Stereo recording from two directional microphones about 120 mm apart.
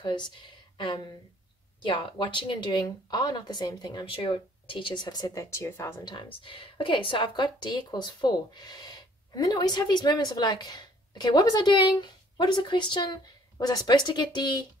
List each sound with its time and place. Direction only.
0.0 s speech: 40° left (ahead or behind); by 5.9 s 20° left (ahead or behind)
6.0 s speech: 45° left (ahead or behind)